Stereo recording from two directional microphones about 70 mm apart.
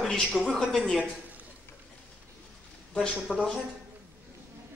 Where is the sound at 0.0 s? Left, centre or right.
Centre.